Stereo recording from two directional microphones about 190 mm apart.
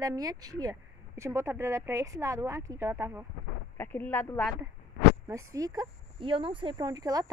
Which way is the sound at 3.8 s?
10° left (ahead or behind).